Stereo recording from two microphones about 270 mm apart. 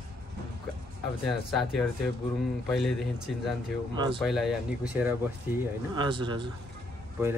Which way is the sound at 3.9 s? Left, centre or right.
Centre.